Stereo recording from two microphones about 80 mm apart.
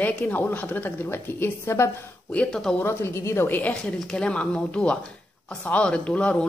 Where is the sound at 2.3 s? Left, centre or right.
Centre.